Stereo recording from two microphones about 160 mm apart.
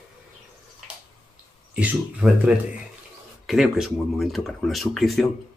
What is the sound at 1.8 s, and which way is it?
Speech, 10° right (ahead or behind).